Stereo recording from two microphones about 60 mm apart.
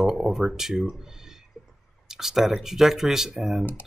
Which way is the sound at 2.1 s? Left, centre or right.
Centre.